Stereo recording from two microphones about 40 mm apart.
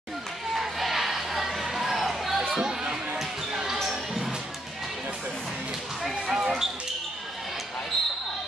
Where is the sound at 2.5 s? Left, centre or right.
Centre.